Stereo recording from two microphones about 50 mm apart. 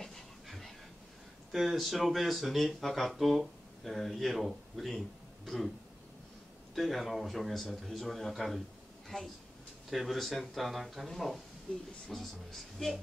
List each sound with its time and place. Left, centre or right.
0.0 s a sound: centre
1.5 s speech: centre
6.7 s a woman's voice: centre